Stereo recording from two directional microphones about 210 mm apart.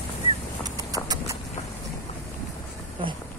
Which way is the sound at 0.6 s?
15° right (ahead or behind).